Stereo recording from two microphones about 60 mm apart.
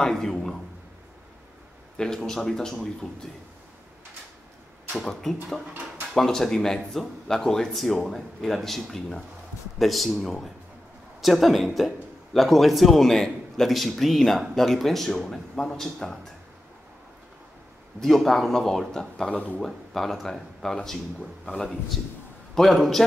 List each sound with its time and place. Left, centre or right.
0.0 s a man's voice: centre
2.0 s speech: centre
4.9 s speech: centre
18.0 s speech: centre
19.3 s speech: left
19.6 s speech: centre
22.5 s speech: centre